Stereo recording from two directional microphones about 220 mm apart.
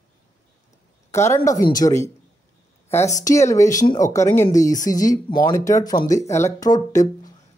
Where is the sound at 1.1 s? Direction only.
10° left (ahead or behind).